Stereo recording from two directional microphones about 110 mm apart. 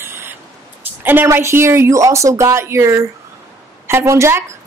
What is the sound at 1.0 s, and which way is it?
A woman's voice, 20° right (ahead or behind).